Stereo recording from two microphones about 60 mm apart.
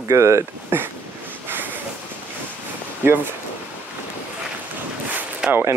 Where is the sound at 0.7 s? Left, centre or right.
Right.